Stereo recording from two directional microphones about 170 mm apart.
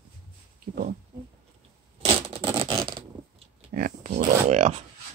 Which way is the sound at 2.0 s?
30° right (ahead or behind).